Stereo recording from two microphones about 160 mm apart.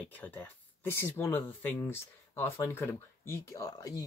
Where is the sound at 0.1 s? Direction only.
10° left (ahead or behind).